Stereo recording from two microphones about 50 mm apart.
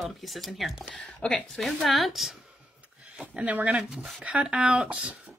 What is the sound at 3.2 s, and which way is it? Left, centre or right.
Speech, right.